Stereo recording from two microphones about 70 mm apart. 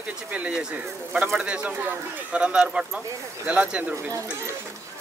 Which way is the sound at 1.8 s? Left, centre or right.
Right.